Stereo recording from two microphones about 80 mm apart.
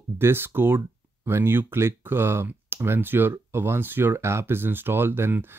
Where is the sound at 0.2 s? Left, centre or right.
Right.